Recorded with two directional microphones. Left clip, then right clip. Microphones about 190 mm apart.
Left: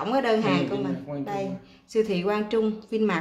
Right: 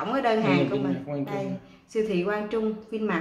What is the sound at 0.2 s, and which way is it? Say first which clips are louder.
Speech: right 1 dB; 40° left (ahead or behind).